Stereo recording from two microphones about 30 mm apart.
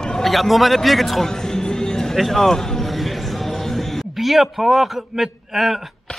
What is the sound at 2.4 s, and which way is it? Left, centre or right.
Speech, centre.